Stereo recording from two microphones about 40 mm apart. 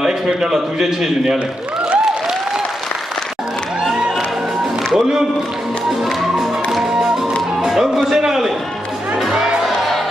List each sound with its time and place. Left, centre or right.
0.0 s a man's voice: centre
3.8 s music: centre
4.9 s a man's voice: centre
6.3 s music: centre
7.6 s speech: centre
9.3 s speech: centre